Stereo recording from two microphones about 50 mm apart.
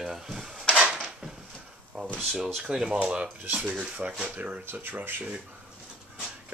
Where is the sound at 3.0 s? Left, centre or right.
Right.